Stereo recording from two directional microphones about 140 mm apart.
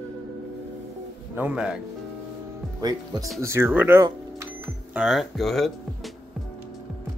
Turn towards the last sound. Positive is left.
turn(degrees=0)  # may be behind; listen again after turning